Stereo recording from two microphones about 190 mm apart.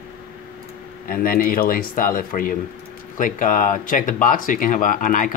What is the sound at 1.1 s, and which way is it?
Speech, 50° left (ahead or behind).